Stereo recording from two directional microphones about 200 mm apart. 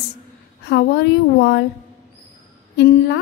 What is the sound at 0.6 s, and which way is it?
A woman's voice, 55° left (ahead or behind).